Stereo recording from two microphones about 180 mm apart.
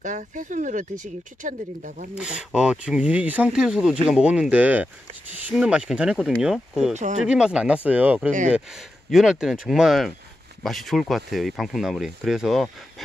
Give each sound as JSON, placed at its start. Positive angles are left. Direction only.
{"t": 0.0, "sound": "speech", "side_deg": -45}
{"t": 2.1, "sound": "speech", "side_deg": -5}
{"t": 6.9, "sound": "speech", "side_deg": -40}
{"t": 7.2, "sound": "speech", "side_deg": -5}